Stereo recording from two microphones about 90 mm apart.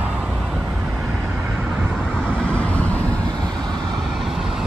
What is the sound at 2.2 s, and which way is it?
Vehicle, 15° left (ahead or behind).